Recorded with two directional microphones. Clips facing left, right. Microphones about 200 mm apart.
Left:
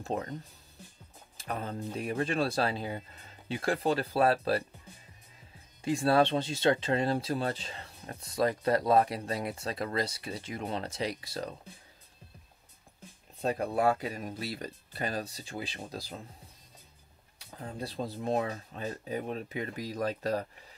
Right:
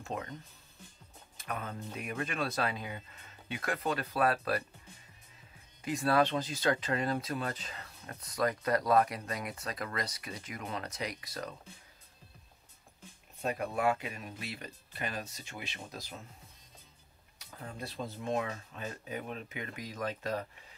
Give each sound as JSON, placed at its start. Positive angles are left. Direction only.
{"t": 0.0, "sound": "speech", "side_deg": 35}
{"t": 1.4, "sound": "speech", "side_deg": 30}
{"t": 5.8, "sound": "speech", "side_deg": 30}
{"t": 13.4, "sound": "speech", "side_deg": 35}
{"t": 17.4, "sound": "speech", "side_deg": 30}